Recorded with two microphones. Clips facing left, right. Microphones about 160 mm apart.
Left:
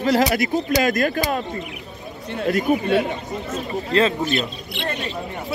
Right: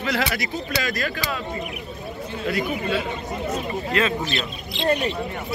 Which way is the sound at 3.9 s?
30° left (ahead or behind).